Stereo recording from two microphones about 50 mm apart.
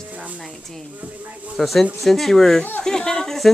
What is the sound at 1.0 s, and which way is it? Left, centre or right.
Speech, right.